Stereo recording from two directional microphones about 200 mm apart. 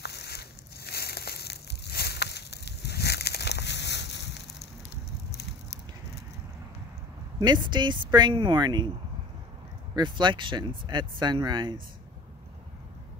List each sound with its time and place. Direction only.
0.0 s a sound: 55° left (ahead or behind)
7.3 s speech: 20° right (ahead or behind)
9.9 s speech: 25° right (ahead or behind)